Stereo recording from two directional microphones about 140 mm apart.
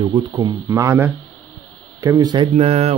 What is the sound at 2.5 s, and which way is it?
Speech, 50° right (ahead or behind).